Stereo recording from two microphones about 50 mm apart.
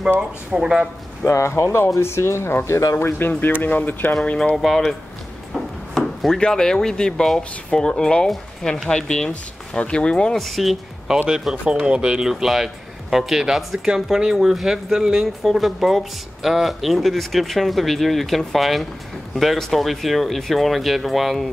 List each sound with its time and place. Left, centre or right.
0.5 s speech: centre
1.2 s speech: left
4.6 s speech: centre
5.9 s speech: centre
10.3 s speech: centre
11.7 s speech: centre